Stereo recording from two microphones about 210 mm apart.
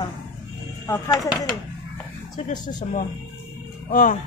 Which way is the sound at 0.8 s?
15° left (ahead or behind).